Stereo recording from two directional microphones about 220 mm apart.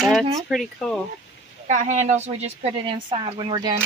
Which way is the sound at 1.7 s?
35° right (ahead or behind).